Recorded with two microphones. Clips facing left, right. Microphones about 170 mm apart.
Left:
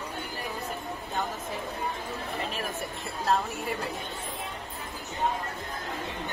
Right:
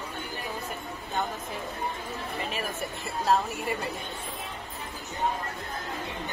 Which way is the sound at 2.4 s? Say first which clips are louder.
Right 2 dB; centre (ahead or behind).